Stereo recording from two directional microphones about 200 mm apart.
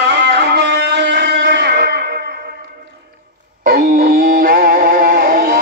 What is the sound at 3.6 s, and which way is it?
Music, 45° right (ahead or behind).